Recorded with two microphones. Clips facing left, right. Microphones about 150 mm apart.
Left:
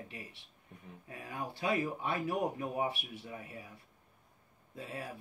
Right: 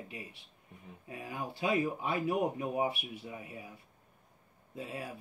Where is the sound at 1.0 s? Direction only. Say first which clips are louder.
Right 4 dB; 20° right (ahead or behind).